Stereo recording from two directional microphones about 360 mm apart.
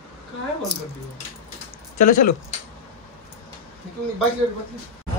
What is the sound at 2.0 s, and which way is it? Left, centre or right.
Speech, left.